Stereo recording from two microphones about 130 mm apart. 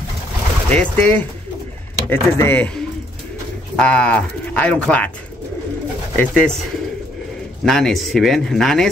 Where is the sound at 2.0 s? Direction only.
15° left (ahead or behind).